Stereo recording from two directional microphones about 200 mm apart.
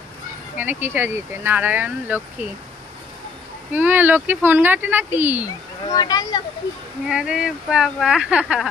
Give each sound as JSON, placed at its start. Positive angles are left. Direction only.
{"t": 0.6, "sound": "speech", "side_deg": -10}
{"t": 3.7, "sound": "speech", "side_deg": -10}
{"t": 5.9, "sound": "speech", "side_deg": 20}
{"t": 7.1, "sound": "speech", "side_deg": -5}